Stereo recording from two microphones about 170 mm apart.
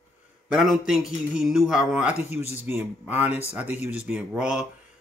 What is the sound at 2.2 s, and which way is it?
Speech, 40° left (ahead or behind).